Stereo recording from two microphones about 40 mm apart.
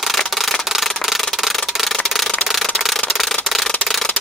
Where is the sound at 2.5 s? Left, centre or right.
Centre.